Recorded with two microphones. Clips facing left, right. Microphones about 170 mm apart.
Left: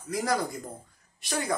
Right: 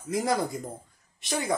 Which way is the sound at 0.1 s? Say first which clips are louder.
Right 2 dB; 25° right (ahead or behind).